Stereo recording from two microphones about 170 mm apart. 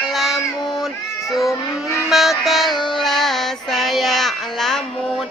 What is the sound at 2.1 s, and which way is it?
Mantra, centre (ahead or behind).